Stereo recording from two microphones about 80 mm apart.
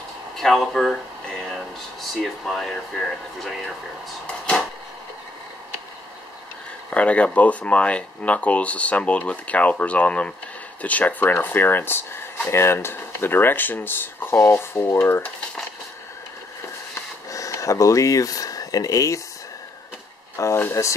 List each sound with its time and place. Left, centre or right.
0.4 s speech: centre
6.9 s speech: centre
17.3 s speech: left
20.3 s speech: left